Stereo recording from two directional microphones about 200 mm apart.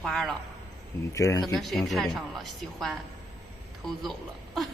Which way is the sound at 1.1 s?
15° left (ahead or behind).